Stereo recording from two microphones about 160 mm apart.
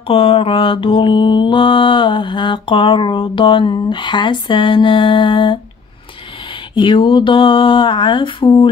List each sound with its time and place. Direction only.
0.1 s mantra: 35° left (ahead or behind)
6.7 s mantra: 30° left (ahead or behind)